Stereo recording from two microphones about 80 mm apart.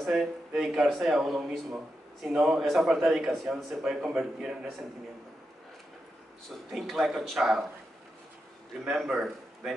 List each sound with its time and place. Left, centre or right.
0.0 s a man's voice: centre
6.5 s a man's voice: centre
8.8 s a man's voice: centre